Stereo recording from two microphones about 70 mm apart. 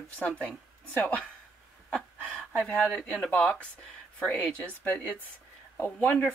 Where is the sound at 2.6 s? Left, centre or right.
Centre.